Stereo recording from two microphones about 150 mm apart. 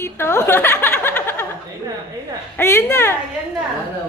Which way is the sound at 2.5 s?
15° left (ahead or behind).